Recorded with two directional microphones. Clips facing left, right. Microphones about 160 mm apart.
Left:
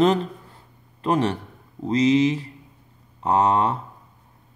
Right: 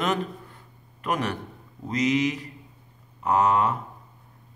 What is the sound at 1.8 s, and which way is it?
Speech, 30° left (ahead or behind).